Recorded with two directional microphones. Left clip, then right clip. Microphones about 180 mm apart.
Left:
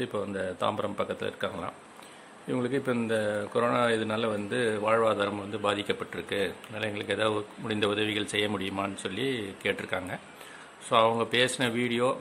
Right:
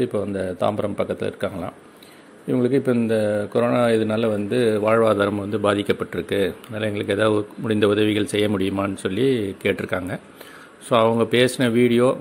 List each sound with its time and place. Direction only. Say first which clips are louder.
0.0 s speech: right 8 dB; 20° right (ahead or behind)